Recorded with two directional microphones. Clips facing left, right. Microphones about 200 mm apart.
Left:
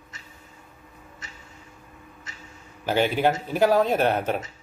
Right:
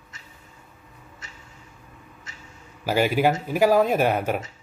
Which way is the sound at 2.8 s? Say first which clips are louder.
Right 1 dB; 5° right (ahead or behind).